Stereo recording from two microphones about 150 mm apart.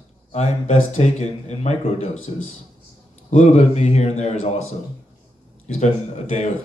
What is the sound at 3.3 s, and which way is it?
Speech, 50° left (ahead or behind).